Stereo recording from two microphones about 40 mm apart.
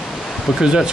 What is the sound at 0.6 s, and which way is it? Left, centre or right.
Speech, centre.